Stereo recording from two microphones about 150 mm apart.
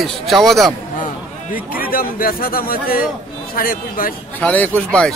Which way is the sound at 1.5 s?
75° left (ahead or behind).